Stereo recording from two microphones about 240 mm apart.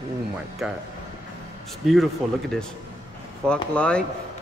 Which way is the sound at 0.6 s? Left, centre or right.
Centre.